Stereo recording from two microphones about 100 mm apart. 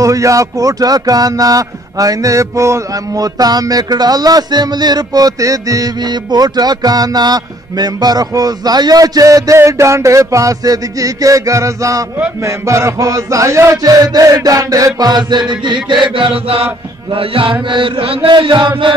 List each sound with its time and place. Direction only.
0.0 s a sound: 35° right (ahead or behind)
12.4 s mantra: 30° right (ahead or behind); by 18.3 s 65° right (ahead or behind)
18.3 s chant: 50° right (ahead or behind)